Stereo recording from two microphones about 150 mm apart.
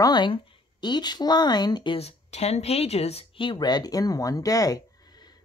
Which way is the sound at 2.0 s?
45° left (ahead or behind).